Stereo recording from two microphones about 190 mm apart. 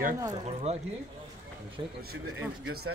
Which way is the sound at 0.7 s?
35° right (ahead or behind).